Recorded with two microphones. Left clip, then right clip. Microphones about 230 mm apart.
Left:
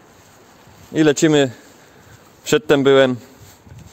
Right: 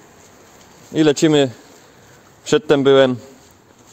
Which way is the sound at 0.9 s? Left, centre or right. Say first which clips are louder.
Even; centre.